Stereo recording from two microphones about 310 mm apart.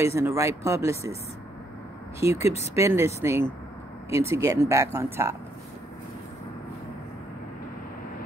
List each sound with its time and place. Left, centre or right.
0.0 s speech: centre
2.3 s speech: left
2.7 s speech: centre